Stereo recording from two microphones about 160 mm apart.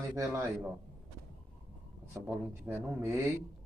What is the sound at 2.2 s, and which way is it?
Speech, 15° right (ahead or behind).